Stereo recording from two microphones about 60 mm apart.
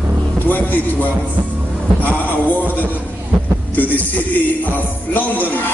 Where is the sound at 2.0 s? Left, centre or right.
Left.